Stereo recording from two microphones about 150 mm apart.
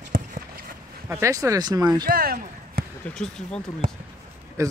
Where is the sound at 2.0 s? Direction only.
80° right.